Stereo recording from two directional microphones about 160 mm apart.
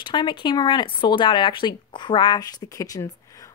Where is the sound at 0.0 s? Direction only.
30° left (ahead or behind).